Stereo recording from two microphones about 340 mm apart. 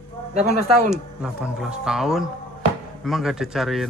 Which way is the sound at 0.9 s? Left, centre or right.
Centre.